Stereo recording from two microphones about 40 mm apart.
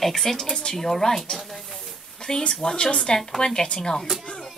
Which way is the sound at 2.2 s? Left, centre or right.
Left.